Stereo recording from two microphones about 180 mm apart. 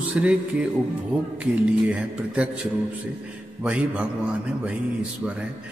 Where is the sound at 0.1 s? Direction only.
5° right (ahead or behind).